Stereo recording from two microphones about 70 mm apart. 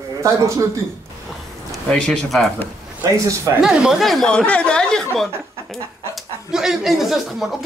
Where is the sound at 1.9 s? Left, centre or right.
Centre.